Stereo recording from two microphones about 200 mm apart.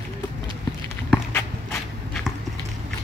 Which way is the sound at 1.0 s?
5° left (ahead or behind).